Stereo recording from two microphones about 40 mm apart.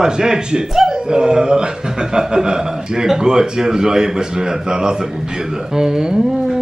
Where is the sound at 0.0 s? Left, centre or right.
Centre.